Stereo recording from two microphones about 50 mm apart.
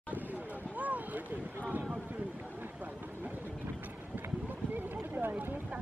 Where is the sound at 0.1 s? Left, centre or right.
Right.